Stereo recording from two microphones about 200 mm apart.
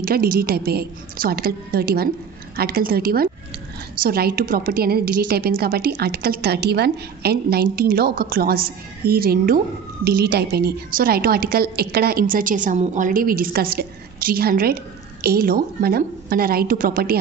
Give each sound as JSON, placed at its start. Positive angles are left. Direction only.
{"t": 0.0, "sound": "a woman's voice", "side_deg": -50}